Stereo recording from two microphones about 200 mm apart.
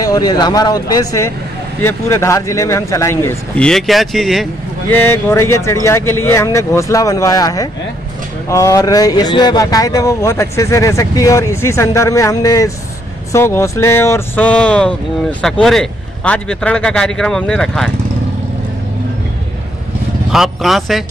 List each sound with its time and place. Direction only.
0.0 s speech: 20° left (ahead or behind); by 4.5 s centre (ahead or behind)
4.9 s speech: 10° left (ahead or behind)
20.2 s speech: centre (ahead or behind)